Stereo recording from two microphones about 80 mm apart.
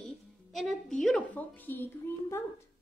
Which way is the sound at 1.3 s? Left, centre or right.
Left.